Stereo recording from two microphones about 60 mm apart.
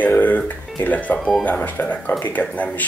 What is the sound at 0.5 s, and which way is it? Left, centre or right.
Speech, left.